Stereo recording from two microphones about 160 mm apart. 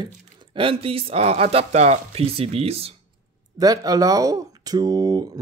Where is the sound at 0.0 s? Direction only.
35° right (ahead or behind).